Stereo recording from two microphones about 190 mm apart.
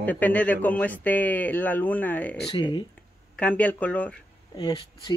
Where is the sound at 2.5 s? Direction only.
25° left (ahead or behind).